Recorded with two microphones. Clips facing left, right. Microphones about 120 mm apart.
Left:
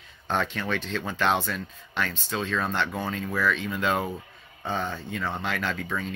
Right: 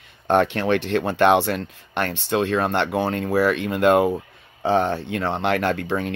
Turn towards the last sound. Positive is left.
turn(degrees=-65)  # may be behind; listen again after turning